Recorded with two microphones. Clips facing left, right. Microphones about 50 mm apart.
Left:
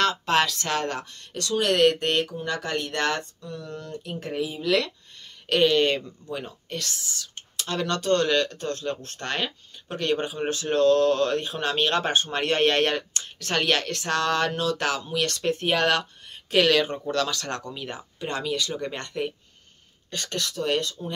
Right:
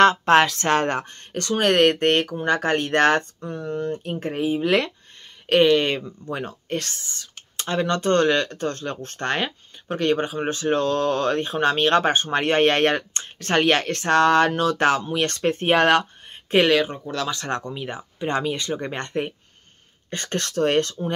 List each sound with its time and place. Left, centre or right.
0.0 s speech: right
5.7 s speech: centre
6.7 s speech: right
16.6 s speech: centre
17.3 s speech: right
20.3 s speech: right